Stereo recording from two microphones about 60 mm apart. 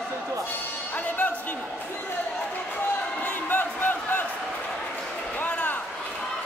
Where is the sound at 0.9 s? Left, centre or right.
Left.